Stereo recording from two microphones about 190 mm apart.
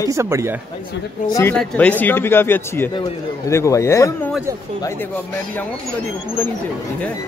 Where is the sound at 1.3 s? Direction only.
10° left (ahead or behind).